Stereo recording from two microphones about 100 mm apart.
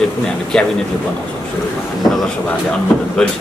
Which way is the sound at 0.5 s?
5° left (ahead or behind).